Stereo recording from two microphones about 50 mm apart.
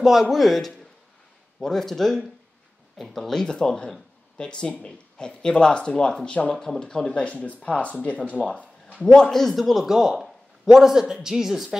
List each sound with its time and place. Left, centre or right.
0.0 s a man's voice: centre; by 6.5 s left
6.5 s speech: centre; by 8.2 s left
8.4 s a sound: left
9.1 s a man's voice: centre